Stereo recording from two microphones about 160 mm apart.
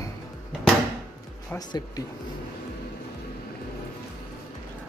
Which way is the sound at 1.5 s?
25° left (ahead or behind).